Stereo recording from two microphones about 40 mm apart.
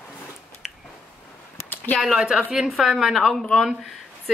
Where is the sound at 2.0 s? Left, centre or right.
Centre.